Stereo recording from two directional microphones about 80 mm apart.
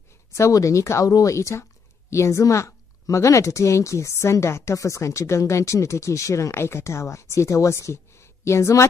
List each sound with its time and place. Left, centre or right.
0.3 s speech: left